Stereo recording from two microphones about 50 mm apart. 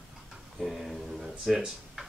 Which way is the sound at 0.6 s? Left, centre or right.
Centre.